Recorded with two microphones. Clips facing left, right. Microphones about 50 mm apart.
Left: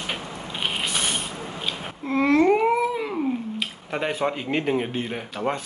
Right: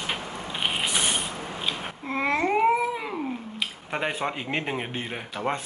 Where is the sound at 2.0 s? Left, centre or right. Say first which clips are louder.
Left 6 dB; centre.